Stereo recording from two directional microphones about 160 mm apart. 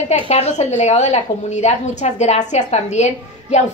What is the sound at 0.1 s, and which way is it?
A woman's voice, 45° left (ahead or behind).